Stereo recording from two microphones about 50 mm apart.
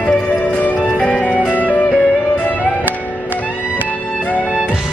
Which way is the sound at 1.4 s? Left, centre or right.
Left.